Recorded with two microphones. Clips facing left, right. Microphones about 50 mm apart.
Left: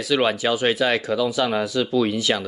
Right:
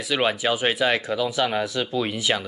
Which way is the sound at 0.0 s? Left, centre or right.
Centre.